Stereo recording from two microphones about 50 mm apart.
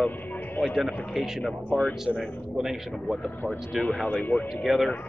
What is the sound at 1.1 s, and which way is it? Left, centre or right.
Speech, centre.